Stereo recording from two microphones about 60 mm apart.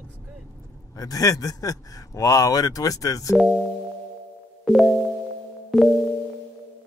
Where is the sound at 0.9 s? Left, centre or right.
Left.